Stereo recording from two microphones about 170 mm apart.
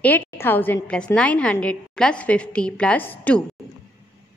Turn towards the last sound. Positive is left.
turn(degrees=10)  # may be behind; listen again after turning